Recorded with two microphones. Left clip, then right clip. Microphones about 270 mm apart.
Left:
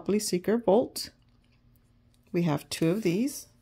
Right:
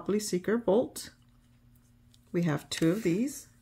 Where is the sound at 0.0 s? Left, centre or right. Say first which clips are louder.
Left 2 dB; left.